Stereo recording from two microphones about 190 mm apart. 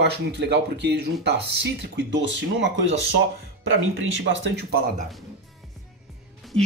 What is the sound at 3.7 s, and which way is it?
Speech, 70° right (ahead or behind).